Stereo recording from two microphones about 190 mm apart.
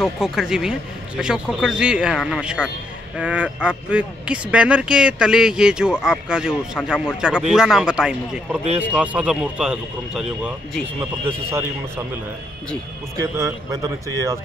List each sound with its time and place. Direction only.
0.0 s a man's voice: centre (ahead or behind)
13.2 s a man's voice: 15° right (ahead or behind)